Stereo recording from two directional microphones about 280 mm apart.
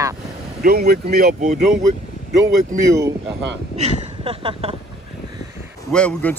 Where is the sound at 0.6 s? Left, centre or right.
Right.